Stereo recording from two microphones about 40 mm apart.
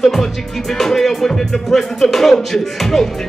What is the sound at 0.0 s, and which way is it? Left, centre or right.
Music, centre.